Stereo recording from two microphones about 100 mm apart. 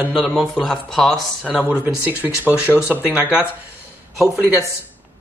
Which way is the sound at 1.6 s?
15° right (ahead or behind).